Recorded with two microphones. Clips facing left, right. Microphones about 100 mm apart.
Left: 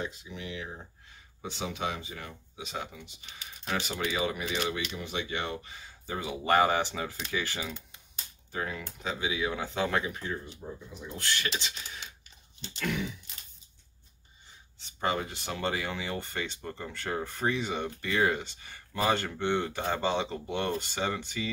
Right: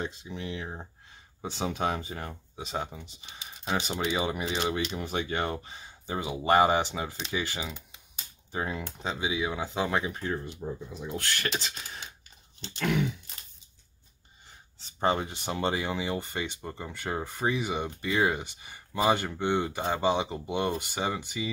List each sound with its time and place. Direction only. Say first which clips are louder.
0.0 s speech: right 2 dB; 30° right (ahead or behind)
5.6 s speech: right 2 dB; 25° right (ahead or behind)
10.6 s speech: right 6 dB; 75° right (ahead or behind)
11.0 s speech: left 1 dB; 55° right (ahead or behind); by 12.1 s 40° right (ahead or behind)
12.7 s speech: right 5 dB; 55° right (ahead or behind)
14.8 s speech: right 3 dB; 35° right (ahead or behind); by 21.5 s 15° right (ahead or behind)